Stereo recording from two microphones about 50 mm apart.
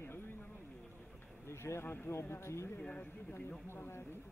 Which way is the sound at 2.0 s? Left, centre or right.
Left.